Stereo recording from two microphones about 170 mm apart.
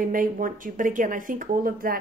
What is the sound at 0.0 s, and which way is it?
Speech, 55° right (ahead or behind).